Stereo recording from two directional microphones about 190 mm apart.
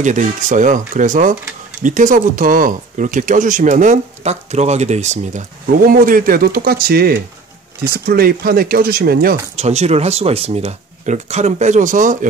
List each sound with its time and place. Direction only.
0.0 s speech: 40° right (ahead or behind)
9.6 s speech: 35° right (ahead or behind)